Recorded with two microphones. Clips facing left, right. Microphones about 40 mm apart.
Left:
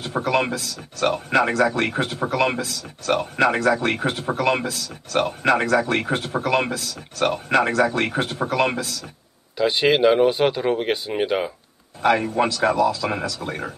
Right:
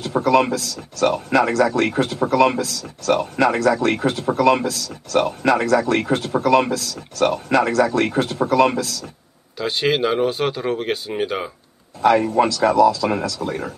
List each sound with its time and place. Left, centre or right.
0.1 s speech: left
9.6 s speech: centre
12.0 s speech: left